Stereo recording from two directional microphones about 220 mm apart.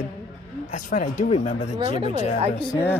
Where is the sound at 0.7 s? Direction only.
35° left (ahead or behind).